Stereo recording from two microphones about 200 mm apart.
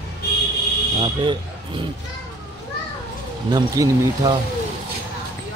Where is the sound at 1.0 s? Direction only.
25° right (ahead or behind).